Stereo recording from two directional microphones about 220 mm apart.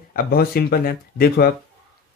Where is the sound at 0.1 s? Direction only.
45° left (ahead or behind).